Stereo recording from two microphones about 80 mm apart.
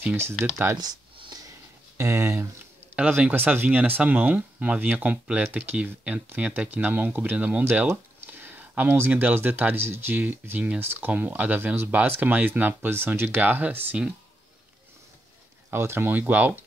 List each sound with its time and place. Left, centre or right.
0.0 s speech: right
0.7 s a sound: right
2.0 s speech: right
15.7 s speech: right